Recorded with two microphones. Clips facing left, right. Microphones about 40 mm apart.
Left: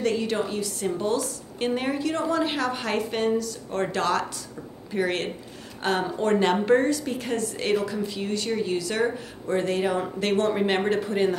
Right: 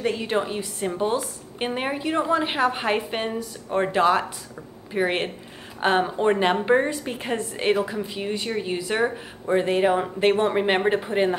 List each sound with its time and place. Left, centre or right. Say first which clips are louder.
0.0 s a woman's voice: right 1 dB; right